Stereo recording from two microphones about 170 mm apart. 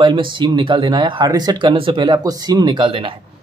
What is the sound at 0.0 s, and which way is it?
Speech, 30° right (ahead or behind).